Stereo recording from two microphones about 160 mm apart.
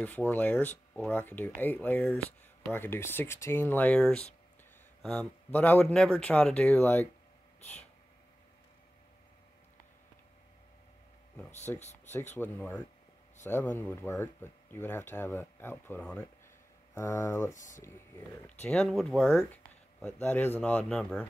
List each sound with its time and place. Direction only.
0.0 s speech: 10° left (ahead or behind)
11.7 s speech: 10° left (ahead or behind)
16.9 s speech: 20° left (ahead or behind)
17.6 s speech: 50° left (ahead or behind)
17.8 s speech: 15° left (ahead or behind)